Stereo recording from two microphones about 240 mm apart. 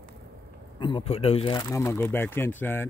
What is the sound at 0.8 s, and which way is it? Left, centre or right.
Speech, centre.